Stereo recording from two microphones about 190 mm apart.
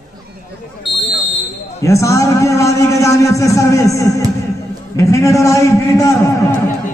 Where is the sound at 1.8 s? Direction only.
15° left (ahead or behind).